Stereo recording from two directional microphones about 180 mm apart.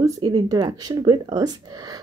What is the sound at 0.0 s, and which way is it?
Speech, 20° right (ahead or behind).